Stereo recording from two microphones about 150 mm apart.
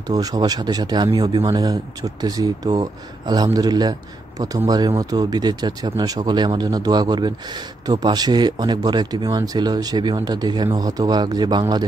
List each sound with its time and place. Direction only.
0.1 s speech: 25° right (ahead or behind)